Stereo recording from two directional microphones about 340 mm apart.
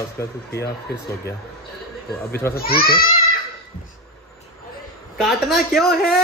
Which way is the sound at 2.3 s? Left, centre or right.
Centre.